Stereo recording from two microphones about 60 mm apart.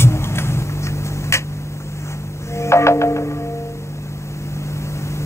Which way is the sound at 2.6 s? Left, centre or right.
Left.